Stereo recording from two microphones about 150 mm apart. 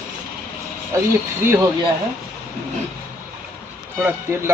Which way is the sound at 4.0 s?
15° right (ahead or behind).